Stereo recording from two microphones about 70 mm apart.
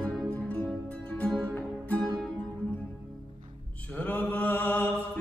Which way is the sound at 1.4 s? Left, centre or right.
Centre.